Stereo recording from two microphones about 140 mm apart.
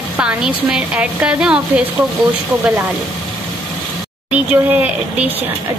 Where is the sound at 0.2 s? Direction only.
5° right (ahead or behind).